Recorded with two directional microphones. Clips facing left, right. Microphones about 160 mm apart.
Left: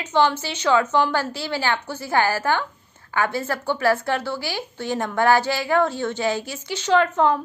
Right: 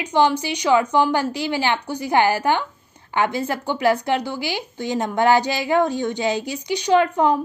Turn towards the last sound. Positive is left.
turn(degrees=-15)  # may be behind; listen again after turning